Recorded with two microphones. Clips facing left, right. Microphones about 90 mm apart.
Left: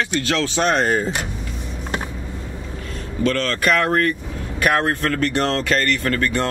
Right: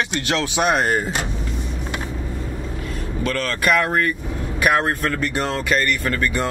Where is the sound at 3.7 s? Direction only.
10° right (ahead or behind).